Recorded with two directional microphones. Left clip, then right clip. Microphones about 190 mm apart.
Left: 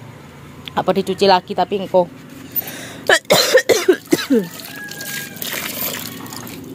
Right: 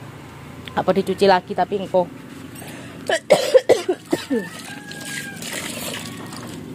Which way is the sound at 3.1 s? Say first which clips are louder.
Left 3 dB; 55° left (ahead or behind).